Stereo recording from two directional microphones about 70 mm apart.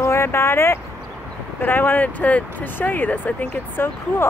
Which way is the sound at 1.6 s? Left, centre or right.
Left.